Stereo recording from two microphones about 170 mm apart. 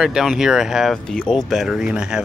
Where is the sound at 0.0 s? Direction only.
Centre (ahead or behind).